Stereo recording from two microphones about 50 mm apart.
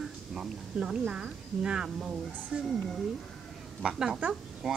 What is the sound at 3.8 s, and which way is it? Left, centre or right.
Speech, centre.